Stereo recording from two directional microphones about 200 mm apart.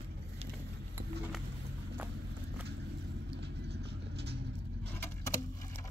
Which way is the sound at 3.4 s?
55° right (ahead or behind).